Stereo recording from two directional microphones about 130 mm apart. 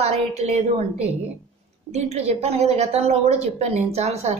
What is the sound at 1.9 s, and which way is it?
A woman's voice, 55° right (ahead or behind).